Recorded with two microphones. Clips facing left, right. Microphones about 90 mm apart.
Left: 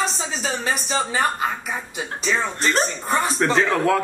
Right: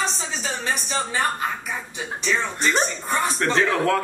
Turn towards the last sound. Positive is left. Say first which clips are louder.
# left 1 dB
turn(degrees=0)  # may be behind; listen again after turning